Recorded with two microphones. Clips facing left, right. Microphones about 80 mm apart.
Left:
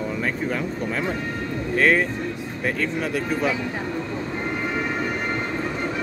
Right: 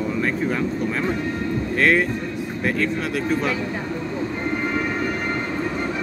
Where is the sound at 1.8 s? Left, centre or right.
Centre.